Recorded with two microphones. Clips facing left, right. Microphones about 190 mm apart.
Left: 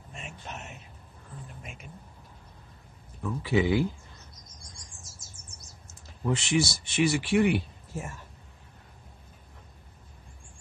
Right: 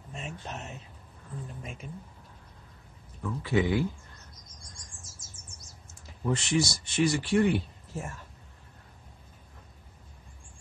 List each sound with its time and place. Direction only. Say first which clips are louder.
0.1 s a sound: right 3 dB; 35° right (ahead or behind)
1.6 s speech: right 4 dB; 35° right (ahead or behind)
3.2 s speech: left 1 dB; 10° left (ahead or behind)
6.2 s speech: left 1 dB; 10° left (ahead or behind)